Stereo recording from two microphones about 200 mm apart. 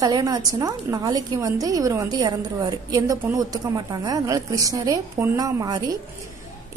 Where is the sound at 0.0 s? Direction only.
20° right (ahead or behind).